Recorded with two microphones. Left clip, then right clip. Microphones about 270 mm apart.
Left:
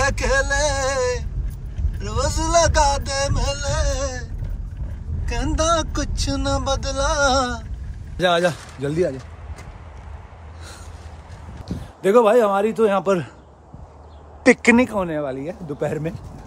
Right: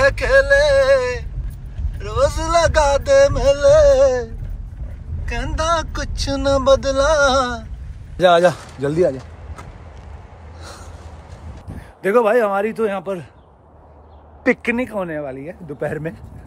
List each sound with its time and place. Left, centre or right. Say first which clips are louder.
0.0 s a sound: right 6 dB; centre
5.2 s vehicle: even; centre
8.2 s a man's voice: right 6 dB; centre
12.0 s speech: even; centre
13.0 s speech: left 6 dB; left
14.4 s speech: left 4 dB; centre